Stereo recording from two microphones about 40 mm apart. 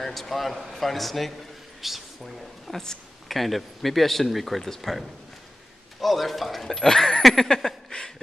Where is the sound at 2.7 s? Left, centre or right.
Centre.